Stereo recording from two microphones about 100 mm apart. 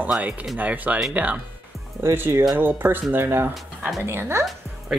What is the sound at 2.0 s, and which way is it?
Speech, 25° right (ahead or behind).